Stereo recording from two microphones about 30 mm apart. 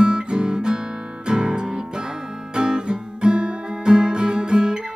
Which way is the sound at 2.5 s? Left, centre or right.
Right.